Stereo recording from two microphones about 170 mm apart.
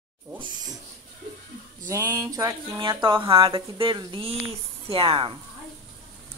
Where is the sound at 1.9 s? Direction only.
20° right (ahead or behind).